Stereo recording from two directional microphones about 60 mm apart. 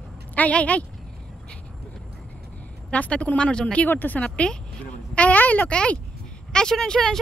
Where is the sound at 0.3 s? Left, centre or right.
Left.